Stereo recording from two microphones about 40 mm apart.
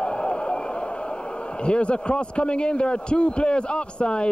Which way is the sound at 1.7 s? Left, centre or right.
Left.